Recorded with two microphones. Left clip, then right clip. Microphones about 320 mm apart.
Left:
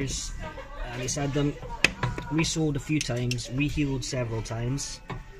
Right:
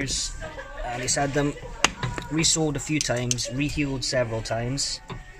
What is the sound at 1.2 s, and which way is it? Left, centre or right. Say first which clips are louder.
Speech: right 3 dB; right.